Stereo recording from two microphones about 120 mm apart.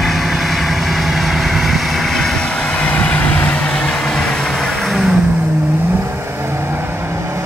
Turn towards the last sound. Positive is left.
turn(degrees=-20)  # may be behind; listen again after turning